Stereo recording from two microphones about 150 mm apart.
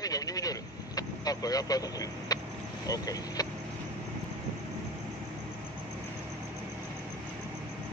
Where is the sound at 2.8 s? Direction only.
25° left (ahead or behind).